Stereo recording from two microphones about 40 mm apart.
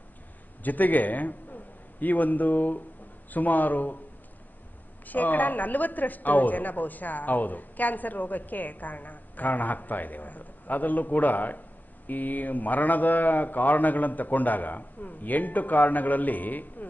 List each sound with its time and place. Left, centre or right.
0.7 s a man's voice: left
5.0 s a woman's voice: left